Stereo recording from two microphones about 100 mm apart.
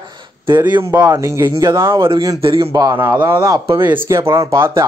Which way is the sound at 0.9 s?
35° right (ahead or behind).